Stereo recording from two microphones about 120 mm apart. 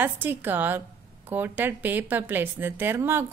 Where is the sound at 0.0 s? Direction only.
15° right (ahead or behind).